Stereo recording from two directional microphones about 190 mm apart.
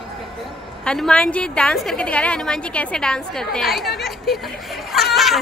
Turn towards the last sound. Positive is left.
turn(degrees=0)  # may be behind; listen again after turning